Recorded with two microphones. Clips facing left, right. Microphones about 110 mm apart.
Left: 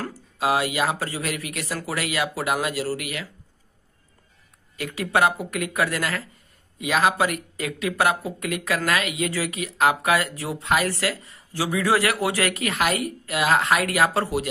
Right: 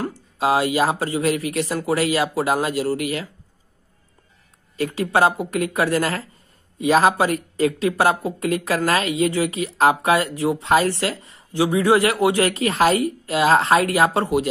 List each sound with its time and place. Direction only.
0.1 s speech: 30° right (ahead or behind)
4.7 s speech: 30° right (ahead or behind)